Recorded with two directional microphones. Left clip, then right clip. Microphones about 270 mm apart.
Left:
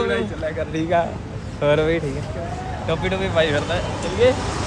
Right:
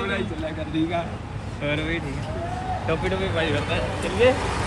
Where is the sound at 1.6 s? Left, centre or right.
Centre.